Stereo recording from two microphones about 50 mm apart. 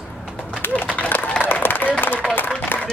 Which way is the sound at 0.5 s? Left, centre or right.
Left.